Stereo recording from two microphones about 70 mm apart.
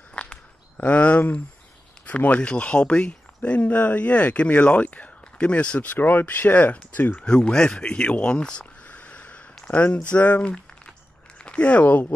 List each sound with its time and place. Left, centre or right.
0.1 s a sound: centre
2.0 s speech: centre
7.2 s speech: centre